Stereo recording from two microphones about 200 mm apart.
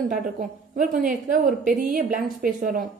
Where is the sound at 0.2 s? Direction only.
40° right (ahead or behind).